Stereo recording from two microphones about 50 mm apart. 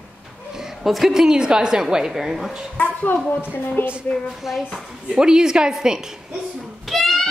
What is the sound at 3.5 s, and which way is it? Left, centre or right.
Speech, left.